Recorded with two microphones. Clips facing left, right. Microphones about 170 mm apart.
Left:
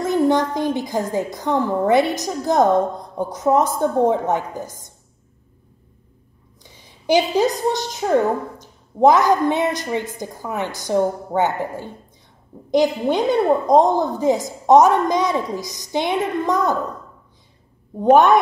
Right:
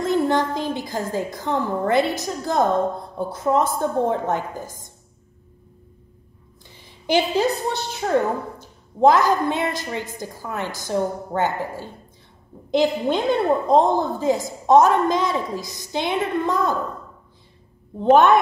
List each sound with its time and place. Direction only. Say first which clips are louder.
0.1 s a woman's voice: left 3 dB; 15° left (ahead or behind)
6.6 s a sound: left 3 dB; 15° left (ahead or behind)
8.5 s a woman's voice: left 3 dB; 20° left (ahead or behind)
17.9 s a woman's voice: left 2 dB; 15° left (ahead or behind)